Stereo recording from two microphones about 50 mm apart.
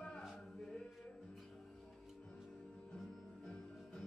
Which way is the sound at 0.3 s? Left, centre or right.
Centre.